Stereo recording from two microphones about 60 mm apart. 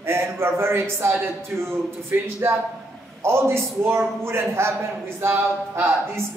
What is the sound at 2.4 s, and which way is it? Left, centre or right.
A man's voice, right.